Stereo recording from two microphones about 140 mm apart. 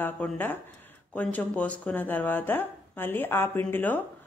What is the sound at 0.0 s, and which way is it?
Speech, 15° left (ahead or behind).